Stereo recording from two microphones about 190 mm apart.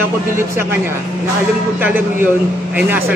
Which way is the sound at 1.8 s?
10° right (ahead or behind).